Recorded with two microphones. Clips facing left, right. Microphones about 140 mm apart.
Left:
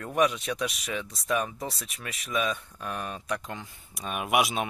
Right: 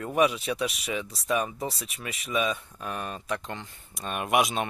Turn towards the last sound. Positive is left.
turn(degrees=5)  # may be behind; listen again after turning